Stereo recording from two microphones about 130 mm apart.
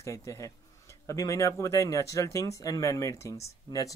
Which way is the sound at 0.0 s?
25° left (ahead or behind).